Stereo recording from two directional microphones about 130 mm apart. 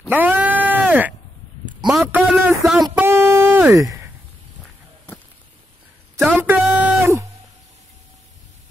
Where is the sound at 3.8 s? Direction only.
25° right (ahead or behind).